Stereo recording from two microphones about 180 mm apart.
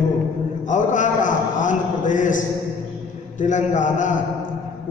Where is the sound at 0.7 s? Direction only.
45° left (ahead or behind).